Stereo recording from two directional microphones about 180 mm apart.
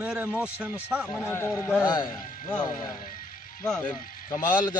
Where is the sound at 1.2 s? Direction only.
15° left (ahead or behind).